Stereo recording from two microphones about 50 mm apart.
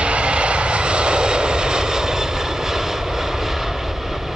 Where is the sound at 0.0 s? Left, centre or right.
Right.